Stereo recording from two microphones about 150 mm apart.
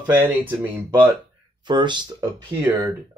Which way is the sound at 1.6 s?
30° right (ahead or behind).